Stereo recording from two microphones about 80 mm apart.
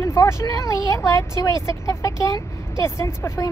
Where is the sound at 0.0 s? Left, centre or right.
Left.